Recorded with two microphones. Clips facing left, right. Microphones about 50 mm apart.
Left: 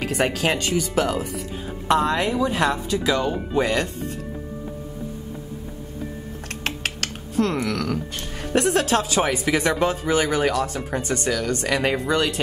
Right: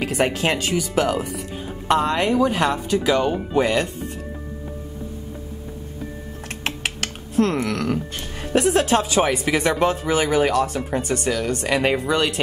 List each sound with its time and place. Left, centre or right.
0.0 s speech: centre
1.9 s speech: centre
2.1 s speech: centre
6.6 s typing: centre
7.6 s speech: centre
8.5 s speech: centre